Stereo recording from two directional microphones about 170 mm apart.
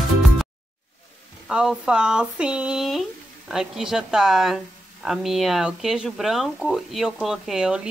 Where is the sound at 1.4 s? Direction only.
5° right (ahead or behind).